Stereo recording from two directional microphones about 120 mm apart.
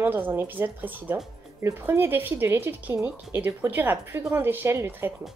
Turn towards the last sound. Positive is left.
turn(degrees=-20)  # may be behind; listen again after turning